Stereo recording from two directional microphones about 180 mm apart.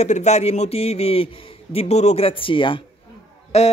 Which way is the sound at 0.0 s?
40° left (ahead or behind).